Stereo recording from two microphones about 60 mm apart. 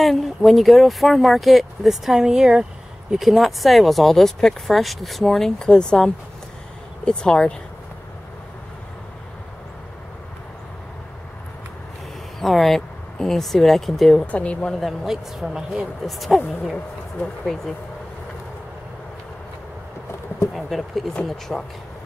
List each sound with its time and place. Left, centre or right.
0.0 s speech: centre
12.4 s speech: centre
14.2 s speech: left
14.7 s speech: centre
20.5 s speech: centre